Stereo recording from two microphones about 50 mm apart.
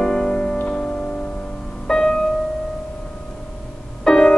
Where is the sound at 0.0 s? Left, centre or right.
Centre.